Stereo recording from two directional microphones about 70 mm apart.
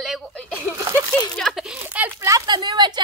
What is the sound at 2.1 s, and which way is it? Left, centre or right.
Speech, right.